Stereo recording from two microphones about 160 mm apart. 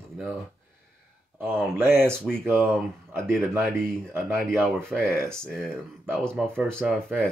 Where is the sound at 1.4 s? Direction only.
15° right (ahead or behind).